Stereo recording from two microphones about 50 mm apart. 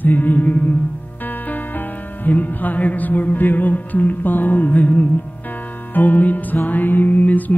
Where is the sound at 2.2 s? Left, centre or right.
Left.